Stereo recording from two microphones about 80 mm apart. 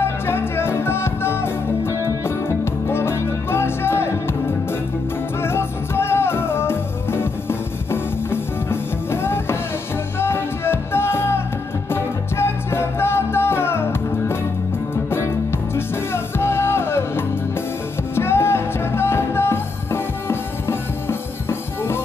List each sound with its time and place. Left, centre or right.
0.0 s music: left